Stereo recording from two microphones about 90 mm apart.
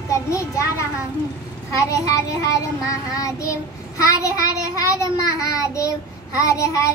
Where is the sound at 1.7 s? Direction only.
40° left (ahead or behind).